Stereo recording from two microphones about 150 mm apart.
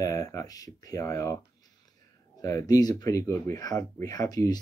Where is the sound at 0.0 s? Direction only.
20° left (ahead or behind).